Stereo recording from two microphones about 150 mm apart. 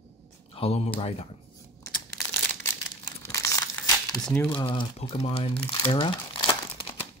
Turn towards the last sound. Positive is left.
turn(degrees=35)  # may be behind; listen again after turning